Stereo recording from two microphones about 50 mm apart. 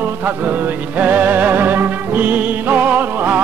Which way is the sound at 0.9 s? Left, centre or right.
Right.